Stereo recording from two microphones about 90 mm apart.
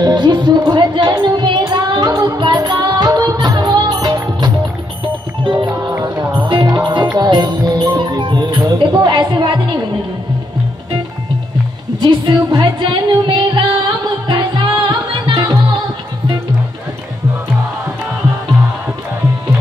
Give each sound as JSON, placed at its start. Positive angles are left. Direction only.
{"t": 0.0, "sound": "music", "side_deg": -50}
{"t": 5.9, "sound": "music", "side_deg": -20}
{"t": 6.5, "sound": "music", "side_deg": -50}
{"t": 12.0, "sound": "music", "side_deg": -65}